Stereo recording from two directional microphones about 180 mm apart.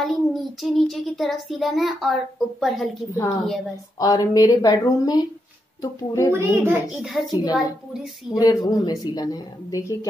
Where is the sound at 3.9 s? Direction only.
20° left (ahead or behind).